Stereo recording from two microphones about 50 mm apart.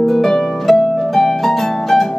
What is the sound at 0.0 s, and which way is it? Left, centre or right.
Harp, centre.